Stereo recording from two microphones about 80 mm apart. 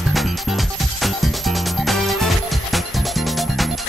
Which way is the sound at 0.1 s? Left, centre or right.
Centre.